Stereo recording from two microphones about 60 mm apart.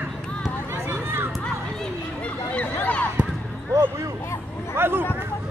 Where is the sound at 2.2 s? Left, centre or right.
Left.